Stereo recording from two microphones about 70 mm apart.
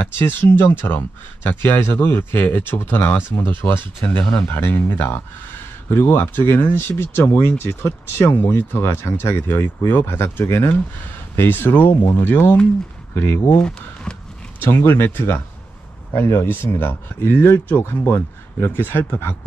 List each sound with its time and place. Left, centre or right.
0.0 s speech: left
13.6 s speech: centre
14.6 s speech: left
16.1 s speech: left